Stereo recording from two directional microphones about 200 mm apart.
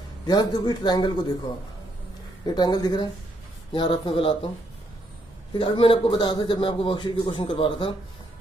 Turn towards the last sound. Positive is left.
turn(degrees=25)  # may be behind; listen again after turning